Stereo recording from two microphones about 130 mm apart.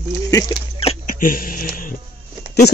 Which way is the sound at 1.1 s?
90° left.